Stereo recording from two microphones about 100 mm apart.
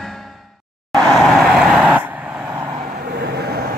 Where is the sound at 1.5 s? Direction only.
5° right (ahead or behind).